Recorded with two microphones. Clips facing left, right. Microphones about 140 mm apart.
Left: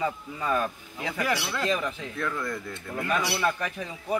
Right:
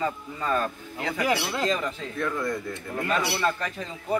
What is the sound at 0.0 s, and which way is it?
Speech, 10° left (ahead or behind).